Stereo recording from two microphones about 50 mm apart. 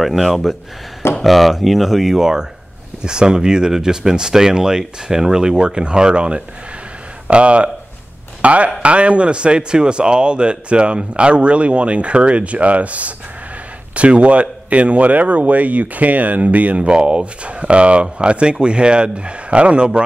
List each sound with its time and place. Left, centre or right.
0.0 s speech: centre; by 20.1 s right